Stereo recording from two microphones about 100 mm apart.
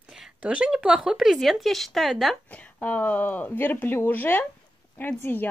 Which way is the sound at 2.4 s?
15° left (ahead or behind).